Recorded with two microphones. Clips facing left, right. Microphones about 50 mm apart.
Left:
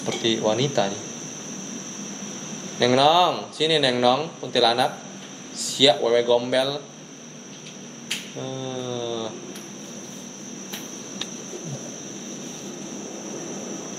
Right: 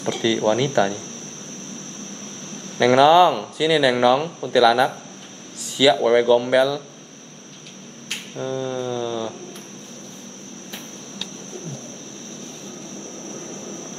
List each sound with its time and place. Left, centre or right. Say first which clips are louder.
0.0 s speech: right 3 dB; centre
2.8 s speech: right 4 dB; right
5.6 s a sound: right 2 dB; right
6.0 s speech: right 3 dB; centre
8.4 s mantra: right 7 dB; right